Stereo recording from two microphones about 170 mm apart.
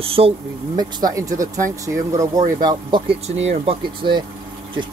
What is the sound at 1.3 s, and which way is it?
Speech, 50° right (ahead or behind).